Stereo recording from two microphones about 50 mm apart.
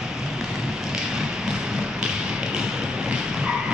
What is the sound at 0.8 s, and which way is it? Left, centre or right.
Tap, centre.